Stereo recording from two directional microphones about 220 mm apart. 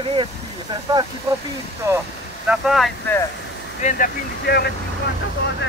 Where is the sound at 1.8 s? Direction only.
15° right (ahead or behind).